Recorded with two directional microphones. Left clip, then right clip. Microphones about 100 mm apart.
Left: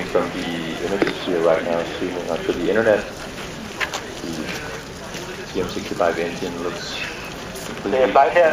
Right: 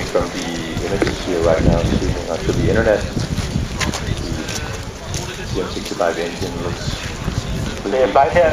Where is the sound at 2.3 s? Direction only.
Centre (ahead or behind).